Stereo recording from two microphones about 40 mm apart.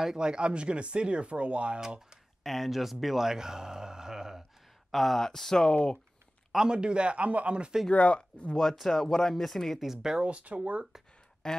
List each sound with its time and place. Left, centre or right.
0.0 s speech: centre
2.4 s speech: centre
4.9 s speech: centre
6.7 s speech: right
7.9 s speech: left
8.7 s speech: centre
9.8 s speech: centre
10.1 s speech: right
11.4 s speech: centre